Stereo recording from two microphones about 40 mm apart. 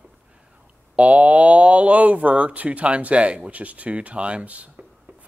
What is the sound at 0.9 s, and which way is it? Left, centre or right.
Speech, right.